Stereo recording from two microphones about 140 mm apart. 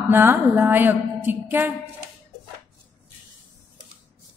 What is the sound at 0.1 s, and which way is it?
A woman's voice, 15° right (ahead or behind).